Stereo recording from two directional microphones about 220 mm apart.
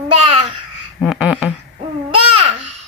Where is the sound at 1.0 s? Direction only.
Centre (ahead or behind).